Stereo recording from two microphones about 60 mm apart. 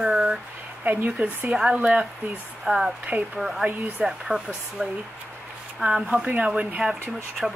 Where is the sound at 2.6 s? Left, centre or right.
Centre.